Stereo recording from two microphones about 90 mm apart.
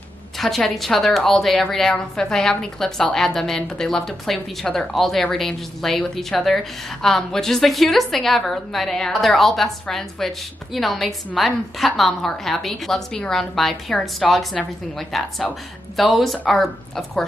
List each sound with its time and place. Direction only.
0.4 s a woman's voice: centre (ahead or behind)